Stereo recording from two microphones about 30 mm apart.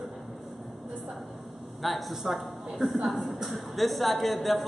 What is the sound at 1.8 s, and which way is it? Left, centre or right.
A man's voice, centre.